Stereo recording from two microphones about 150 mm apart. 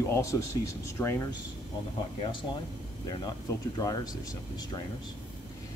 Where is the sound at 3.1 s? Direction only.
25° left (ahead or behind).